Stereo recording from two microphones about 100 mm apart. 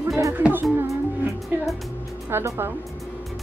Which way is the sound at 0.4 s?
20° right (ahead or behind).